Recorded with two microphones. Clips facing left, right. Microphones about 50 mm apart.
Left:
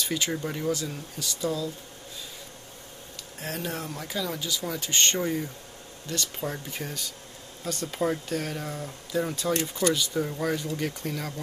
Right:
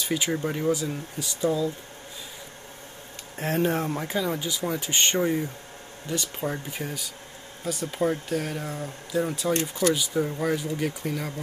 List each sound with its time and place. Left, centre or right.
0.0 s speech: centre
3.3 s speech: right; by 11.3 s centre